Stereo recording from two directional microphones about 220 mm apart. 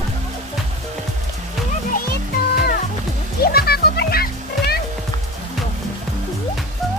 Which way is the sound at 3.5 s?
45° left (ahead or behind).